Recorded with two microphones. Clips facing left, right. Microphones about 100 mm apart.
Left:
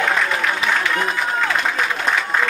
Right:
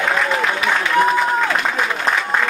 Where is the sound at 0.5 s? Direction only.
Centre (ahead or behind).